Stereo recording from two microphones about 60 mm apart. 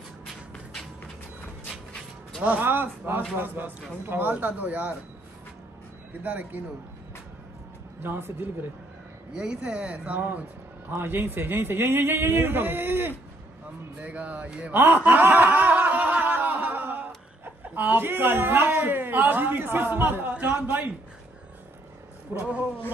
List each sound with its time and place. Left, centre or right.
2.6 s a woman's voice: right
6.2 s speech: right
8.0 s a woman's voice: right
9.3 s speech: centre
10.9 s a woman's voice: right
14.0 s speech: right
15.0 s snicker: right
17.7 s a woman's voice: right
22.3 s speech: right